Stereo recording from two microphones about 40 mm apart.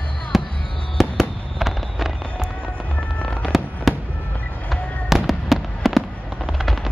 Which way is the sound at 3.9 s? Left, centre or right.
Centre.